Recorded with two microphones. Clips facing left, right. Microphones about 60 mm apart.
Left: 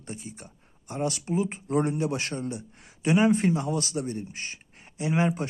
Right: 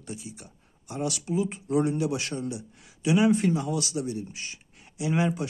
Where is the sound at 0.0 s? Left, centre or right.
Left.